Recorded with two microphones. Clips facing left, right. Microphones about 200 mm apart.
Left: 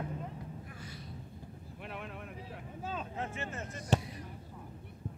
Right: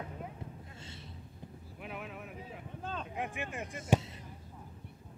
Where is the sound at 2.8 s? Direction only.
5° left (ahead or behind).